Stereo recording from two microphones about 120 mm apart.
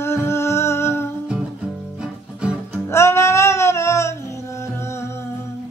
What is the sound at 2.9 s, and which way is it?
Music, 20° left (ahead or behind).